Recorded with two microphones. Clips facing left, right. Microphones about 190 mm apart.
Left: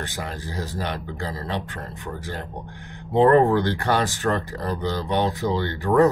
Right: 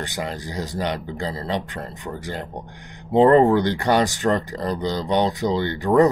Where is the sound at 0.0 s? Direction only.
15° right (ahead or behind).